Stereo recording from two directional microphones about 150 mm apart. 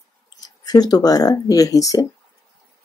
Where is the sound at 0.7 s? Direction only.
25° left (ahead or behind).